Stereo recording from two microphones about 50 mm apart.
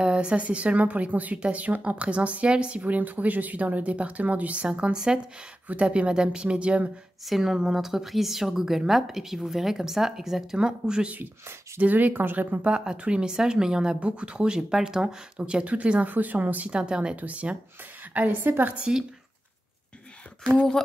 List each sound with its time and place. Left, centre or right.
0.0 s speech: right
7.2 s a woman's voice: centre
11.8 s speech: right
12.7 s a woman's voice: centre
15.3 s speech: right
16.7 s speech: centre
20.5 s speech: centre